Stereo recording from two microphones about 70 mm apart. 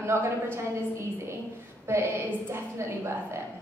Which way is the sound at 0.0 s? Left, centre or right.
Right.